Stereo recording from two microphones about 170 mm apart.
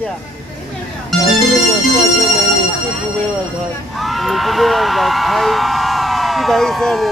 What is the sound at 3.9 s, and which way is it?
Speech, centre (ahead or behind).